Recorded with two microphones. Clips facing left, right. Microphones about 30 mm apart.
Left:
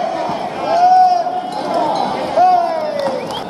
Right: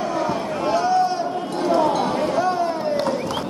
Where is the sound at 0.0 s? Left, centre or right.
Left.